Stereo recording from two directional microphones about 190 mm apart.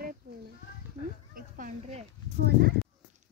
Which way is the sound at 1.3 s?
40° right (ahead or behind).